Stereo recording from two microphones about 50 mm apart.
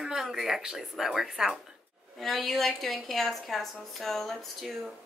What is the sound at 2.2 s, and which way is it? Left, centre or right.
A woman's voice, centre.